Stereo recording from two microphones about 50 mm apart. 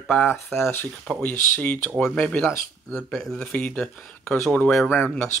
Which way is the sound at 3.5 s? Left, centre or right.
Left.